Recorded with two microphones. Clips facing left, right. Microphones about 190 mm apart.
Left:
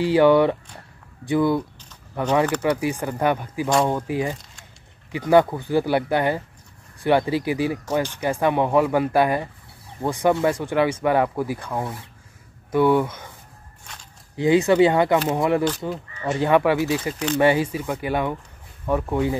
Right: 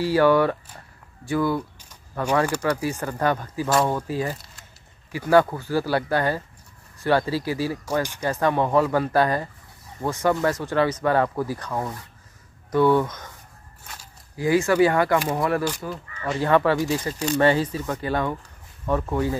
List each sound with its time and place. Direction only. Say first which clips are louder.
0.0 s speech: left 3 dB; 20° left (ahead or behind)
2.6 s speech: left 2 dB; 10° left (ahead or behind)
14.3 s speech: left 3 dB; 20° left (ahead or behind)